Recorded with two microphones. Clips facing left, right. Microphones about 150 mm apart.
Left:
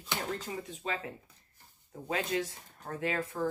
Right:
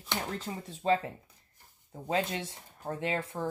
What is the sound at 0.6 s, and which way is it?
Speech, 35° right (ahead or behind).